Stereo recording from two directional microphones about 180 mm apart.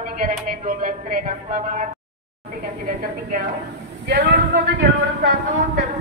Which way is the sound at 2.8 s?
55° right (ahead or behind).